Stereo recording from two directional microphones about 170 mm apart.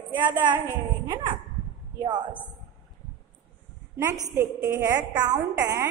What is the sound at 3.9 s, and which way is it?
A woman's voice, 15° right (ahead or behind).